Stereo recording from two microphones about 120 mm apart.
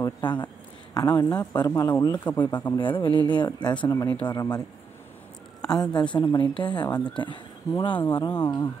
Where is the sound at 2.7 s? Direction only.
45° left (ahead or behind); by 4.6 s 30° left (ahead or behind).